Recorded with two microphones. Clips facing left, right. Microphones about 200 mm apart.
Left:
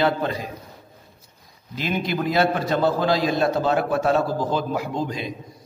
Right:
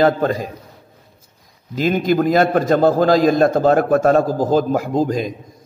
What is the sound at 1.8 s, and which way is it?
A man's voice, 45° right (ahead or behind).